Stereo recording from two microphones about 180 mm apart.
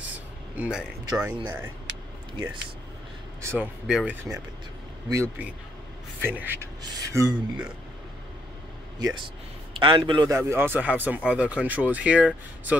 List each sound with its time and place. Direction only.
0.6 s speech: 5° right (ahead or behind)
3.4 s speech: 10° right (ahead or behind)
9.0 s a man's voice: 25° right (ahead or behind)
10.3 s speech: 15° right (ahead or behind)